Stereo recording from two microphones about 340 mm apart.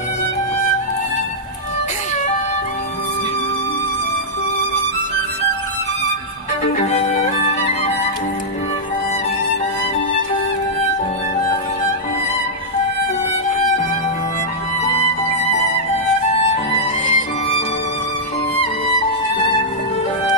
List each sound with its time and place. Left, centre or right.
6.6 s violin: centre
17.0 s music: centre